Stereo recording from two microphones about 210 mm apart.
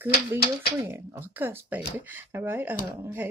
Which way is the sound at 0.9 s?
10° right (ahead or behind).